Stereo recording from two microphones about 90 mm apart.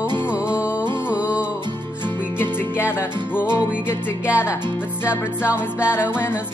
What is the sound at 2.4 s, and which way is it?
Music, 25° left (ahead or behind).